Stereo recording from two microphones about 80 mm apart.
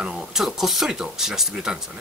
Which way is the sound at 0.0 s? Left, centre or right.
Centre.